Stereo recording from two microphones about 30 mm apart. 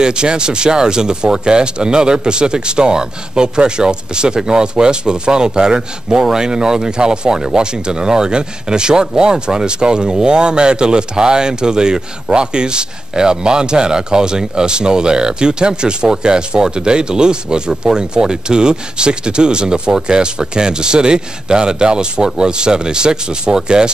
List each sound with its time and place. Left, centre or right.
0.0 s speech: right